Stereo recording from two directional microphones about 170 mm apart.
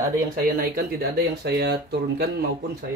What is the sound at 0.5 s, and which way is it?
Speech, 60° right (ahead or behind).